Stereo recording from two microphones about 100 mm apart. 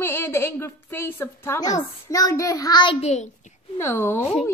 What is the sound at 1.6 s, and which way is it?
A child's voice, 35° left (ahead or behind).